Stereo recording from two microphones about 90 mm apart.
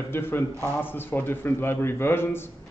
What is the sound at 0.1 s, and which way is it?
Speech, 25° left (ahead or behind).